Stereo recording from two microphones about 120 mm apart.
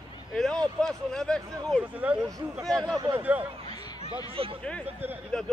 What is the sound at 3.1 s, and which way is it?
Speech, 15° right (ahead or behind).